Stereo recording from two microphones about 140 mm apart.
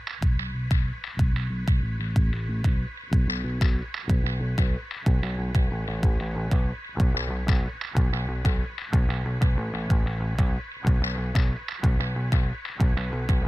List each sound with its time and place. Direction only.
2.1 s music: centre (ahead or behind)
4.2 s music: 15° right (ahead or behind)
4.5 s music: 15° left (ahead or behind)
5.0 s music: centre (ahead or behind)